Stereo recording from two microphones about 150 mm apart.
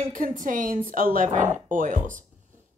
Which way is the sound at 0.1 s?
65° right (ahead or behind).